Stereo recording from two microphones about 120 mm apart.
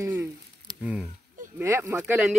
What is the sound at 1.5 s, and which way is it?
Speech, 25° right (ahead or behind).